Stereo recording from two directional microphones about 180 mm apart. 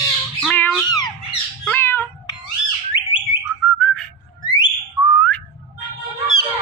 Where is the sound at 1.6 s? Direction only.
10° left (ahead or behind).